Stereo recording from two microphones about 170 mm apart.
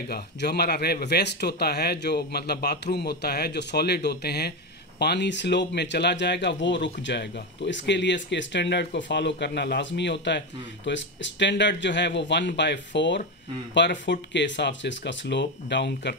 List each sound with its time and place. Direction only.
0.1 s speech: 75° left (ahead or behind); by 16.2 s 90° left